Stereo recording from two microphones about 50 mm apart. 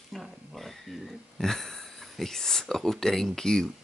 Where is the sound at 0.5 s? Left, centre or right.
Centre.